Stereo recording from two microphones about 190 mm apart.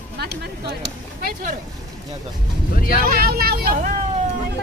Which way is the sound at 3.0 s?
50° right (ahead or behind).